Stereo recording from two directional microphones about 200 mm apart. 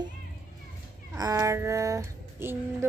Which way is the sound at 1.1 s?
15° right (ahead or behind).